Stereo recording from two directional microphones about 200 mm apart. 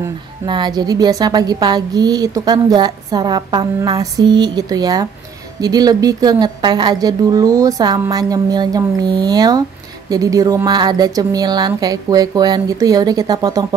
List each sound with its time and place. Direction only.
0.5 s a woman's voice: 20° right (ahead or behind)